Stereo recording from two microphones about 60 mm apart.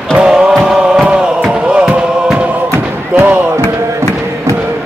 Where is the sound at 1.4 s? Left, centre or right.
Centre.